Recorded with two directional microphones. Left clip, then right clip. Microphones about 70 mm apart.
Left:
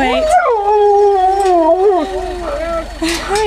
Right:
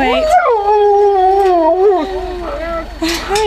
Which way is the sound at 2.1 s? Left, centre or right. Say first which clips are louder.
Left 1 dB; centre.